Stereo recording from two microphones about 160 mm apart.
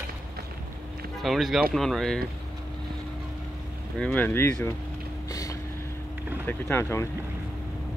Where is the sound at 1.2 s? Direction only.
Centre (ahead or behind).